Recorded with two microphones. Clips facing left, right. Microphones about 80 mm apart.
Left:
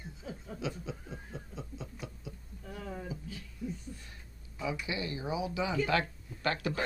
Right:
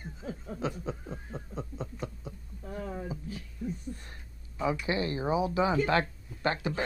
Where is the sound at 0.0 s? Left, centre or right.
Right.